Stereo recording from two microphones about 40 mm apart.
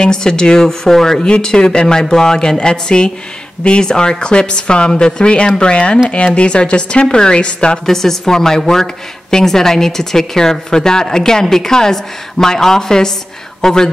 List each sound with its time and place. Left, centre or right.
0.0 s a woman's voice: centre
7.8 s a woman's voice: centre